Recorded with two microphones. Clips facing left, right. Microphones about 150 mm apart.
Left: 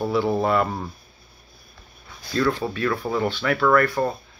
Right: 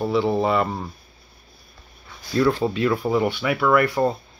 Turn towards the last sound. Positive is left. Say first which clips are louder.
# right 1 dB
turn(degrees=-10)  # may be behind; listen again after turning